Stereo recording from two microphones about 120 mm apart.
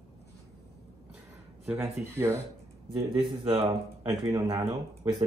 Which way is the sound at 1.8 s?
20° right (ahead or behind).